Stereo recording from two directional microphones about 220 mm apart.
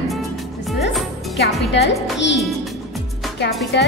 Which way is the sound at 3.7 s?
50° left (ahead or behind).